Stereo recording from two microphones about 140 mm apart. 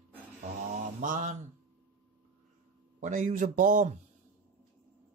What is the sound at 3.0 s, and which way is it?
Speech, 65° right (ahead or behind).